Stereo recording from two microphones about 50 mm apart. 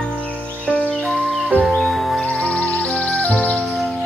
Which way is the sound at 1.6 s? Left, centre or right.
Centre.